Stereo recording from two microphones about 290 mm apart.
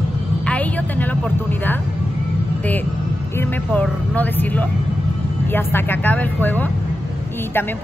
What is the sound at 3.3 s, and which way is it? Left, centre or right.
Speech, centre.